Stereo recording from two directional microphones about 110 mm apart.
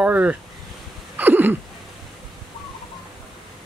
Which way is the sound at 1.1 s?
15° right (ahead or behind).